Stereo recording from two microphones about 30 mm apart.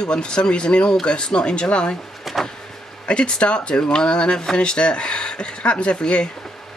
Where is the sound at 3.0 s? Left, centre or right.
Left.